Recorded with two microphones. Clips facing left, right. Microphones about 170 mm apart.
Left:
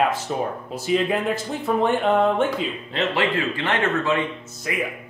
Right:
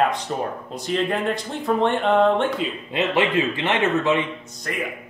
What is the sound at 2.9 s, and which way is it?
A man's voice, 20° right (ahead or behind).